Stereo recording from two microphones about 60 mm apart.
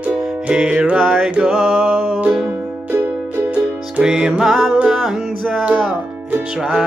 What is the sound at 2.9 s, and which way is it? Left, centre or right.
Music, right.